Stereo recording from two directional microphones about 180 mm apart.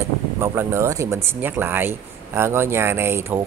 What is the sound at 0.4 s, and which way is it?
Speech, 15° right (ahead or behind).